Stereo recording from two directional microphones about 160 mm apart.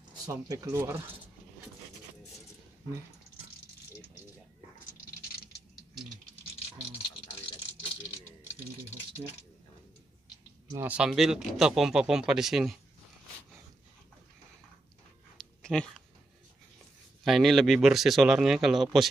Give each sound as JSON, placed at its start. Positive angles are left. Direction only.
{"t": 0.5, "sound": "speech", "side_deg": -20}
{"t": 10.8, "sound": "speech", "side_deg": -5}
{"t": 15.3, "sound": "dog", "side_deg": 5}
{"t": 17.2, "sound": "speech", "side_deg": 0}